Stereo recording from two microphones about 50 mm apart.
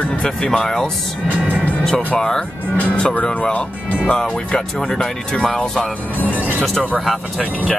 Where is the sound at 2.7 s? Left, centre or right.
Left.